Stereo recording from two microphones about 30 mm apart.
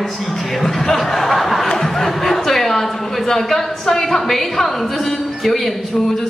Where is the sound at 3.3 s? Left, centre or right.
Centre.